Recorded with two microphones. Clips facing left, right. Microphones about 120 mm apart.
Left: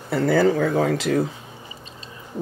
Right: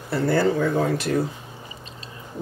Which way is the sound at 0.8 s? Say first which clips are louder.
Left 2 dB; 90° left.